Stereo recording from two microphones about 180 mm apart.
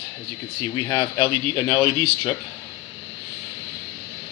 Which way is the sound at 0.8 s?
20° left (ahead or behind).